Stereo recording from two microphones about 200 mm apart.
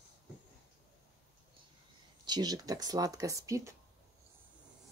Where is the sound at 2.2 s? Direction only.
20° right (ahead or behind).